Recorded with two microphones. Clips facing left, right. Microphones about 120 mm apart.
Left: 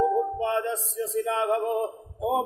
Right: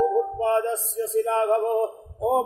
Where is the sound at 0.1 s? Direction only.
40° right (ahead or behind).